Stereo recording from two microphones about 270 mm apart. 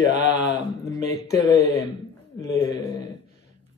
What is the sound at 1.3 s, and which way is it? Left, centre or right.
Speech, centre.